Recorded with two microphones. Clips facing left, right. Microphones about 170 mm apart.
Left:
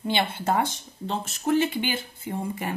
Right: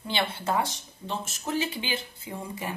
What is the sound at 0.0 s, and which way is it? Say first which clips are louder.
Speech: left 4 dB; 50° left (ahead or behind).